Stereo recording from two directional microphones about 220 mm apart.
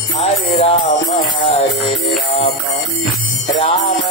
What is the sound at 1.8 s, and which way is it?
Music, centre (ahead or behind).